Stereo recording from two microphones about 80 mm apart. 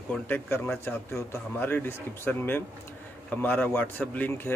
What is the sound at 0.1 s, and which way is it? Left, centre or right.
A man's voice, left.